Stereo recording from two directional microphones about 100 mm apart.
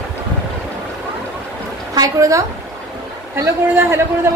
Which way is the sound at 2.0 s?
35° right (ahead or behind).